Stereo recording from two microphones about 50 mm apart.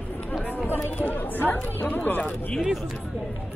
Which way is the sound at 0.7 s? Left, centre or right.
Left.